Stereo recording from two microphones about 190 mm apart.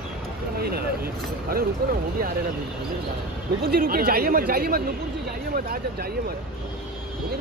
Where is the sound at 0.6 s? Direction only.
55° right (ahead or behind).